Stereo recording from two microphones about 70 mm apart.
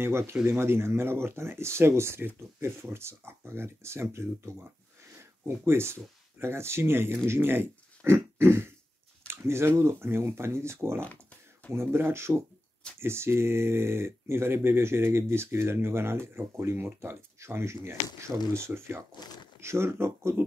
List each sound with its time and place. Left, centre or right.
0.0 s speech: right
19.1 s speech: left
19.6 s speech: right